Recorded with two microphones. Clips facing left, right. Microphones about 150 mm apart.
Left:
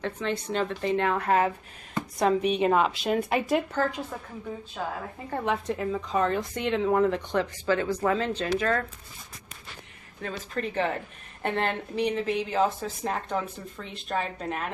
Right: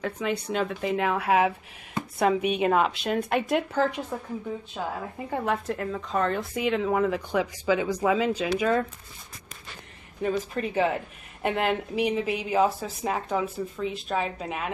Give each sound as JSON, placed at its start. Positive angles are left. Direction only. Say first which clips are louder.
{"t": 0.0, "sound": "speech", "louder": "right 1 dB", "side_deg": -5}
{"t": 3.7, "sound": "speech", "louder": "right 2 dB", "side_deg": -20}
{"t": 10.2, "sound": "speech", "louder": "right 5 dB", "side_deg": -10}